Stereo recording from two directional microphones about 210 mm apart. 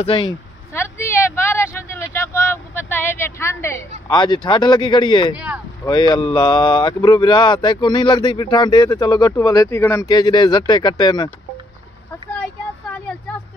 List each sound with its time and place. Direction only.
0.0 s speech: 25° left (ahead or behind)
0.7 s vehicle: 10° left (ahead or behind)
4.1 s speech: 20° left (ahead or behind)